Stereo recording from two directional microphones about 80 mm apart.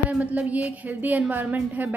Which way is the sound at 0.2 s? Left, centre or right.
Centre.